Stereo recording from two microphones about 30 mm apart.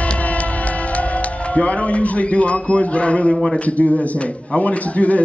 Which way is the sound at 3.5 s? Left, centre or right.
Left.